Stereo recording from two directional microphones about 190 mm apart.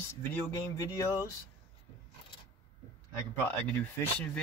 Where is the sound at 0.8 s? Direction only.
15° left (ahead or behind).